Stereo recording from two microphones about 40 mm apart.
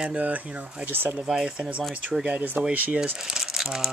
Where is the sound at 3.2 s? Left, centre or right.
Centre.